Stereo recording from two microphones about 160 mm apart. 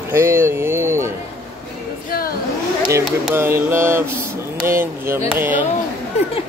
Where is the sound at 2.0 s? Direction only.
65° left (ahead or behind).